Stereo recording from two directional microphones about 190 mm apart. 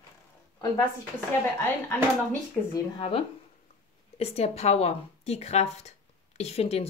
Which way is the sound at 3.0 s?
30° left (ahead or behind).